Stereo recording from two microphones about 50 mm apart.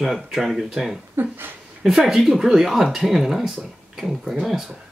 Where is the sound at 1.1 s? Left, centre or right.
Right.